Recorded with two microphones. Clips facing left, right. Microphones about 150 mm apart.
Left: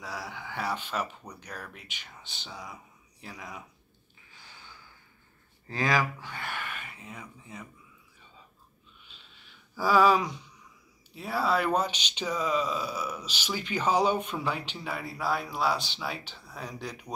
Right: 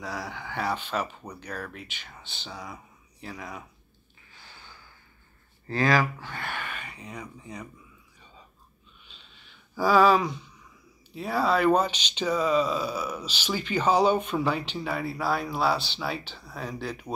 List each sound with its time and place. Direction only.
0.0 s speech: 10° left (ahead or behind)
4.3 s gasp: 15° left (ahead or behind)
5.7 s speech: 15° left (ahead or behind)
9.8 s speech: 10° left (ahead or behind)